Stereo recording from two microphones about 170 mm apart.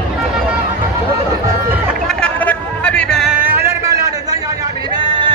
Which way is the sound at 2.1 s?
5° left (ahead or behind).